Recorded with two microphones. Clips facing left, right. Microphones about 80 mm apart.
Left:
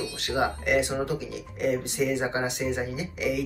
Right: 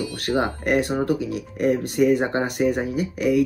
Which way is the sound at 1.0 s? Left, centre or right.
Right.